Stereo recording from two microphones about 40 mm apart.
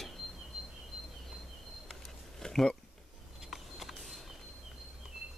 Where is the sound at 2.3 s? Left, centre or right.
Centre.